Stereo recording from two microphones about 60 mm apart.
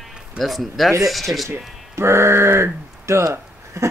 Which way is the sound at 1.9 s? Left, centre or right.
Right.